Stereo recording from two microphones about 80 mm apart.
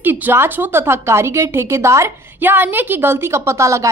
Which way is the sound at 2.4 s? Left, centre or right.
Right.